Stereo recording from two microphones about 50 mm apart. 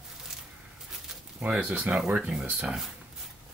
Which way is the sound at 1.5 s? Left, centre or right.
Right.